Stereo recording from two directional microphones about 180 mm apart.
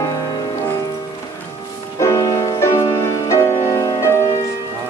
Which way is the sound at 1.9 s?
20° left (ahead or behind).